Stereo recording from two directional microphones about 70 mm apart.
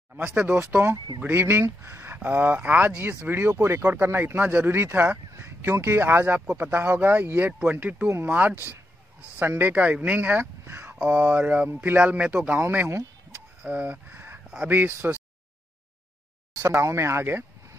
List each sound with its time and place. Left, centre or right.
0.4 s speech: right
9.5 s speech: right
10.7 s a sound: right
11.0 s speech: right
13.7 s speech: right
16.5 s speech: right